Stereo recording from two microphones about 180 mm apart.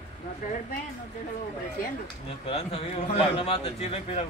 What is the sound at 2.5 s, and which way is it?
A man's voice, 35° left (ahead or behind).